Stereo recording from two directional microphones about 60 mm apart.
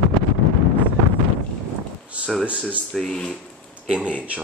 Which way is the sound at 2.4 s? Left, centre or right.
Right.